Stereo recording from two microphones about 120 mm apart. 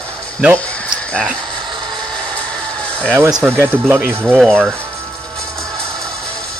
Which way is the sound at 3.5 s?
20° right (ahead or behind).